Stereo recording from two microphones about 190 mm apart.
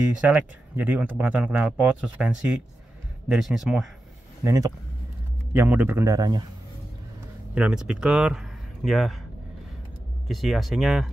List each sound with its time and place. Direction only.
0.3 s speech: 10° right (ahead or behind)
4.5 s speech: 15° right (ahead or behind)
7.5 s speech: 5° right (ahead or behind)
10.2 s speech: centre (ahead or behind)